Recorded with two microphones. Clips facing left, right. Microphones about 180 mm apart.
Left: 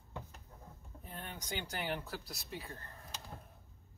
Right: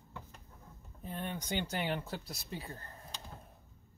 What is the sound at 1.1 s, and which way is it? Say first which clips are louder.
Speech: right 6 dB; 20° right (ahead or behind).